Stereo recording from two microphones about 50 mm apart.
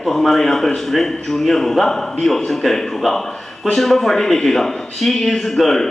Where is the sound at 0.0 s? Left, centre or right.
Centre.